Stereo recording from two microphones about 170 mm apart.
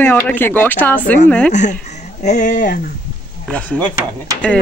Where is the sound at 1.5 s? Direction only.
45° left (ahead or behind).